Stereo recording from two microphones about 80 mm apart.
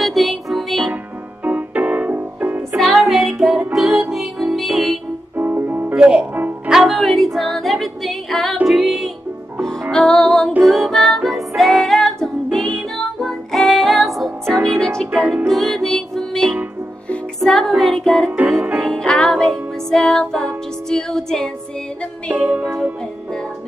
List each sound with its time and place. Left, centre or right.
0.0 s music: centre
1.4 s music: centre
2.8 s music: centre
5.4 s music: right
6.7 s music: centre
22.3 s music: right